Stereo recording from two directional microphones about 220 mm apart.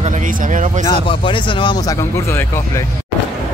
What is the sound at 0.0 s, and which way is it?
Speech, 35° right (ahead or behind).